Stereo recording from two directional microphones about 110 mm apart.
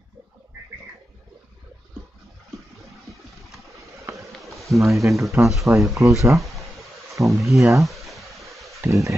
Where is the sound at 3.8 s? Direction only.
30° right (ahead or behind).